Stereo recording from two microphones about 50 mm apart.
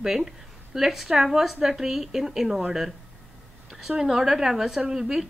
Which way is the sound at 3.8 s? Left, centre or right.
Centre.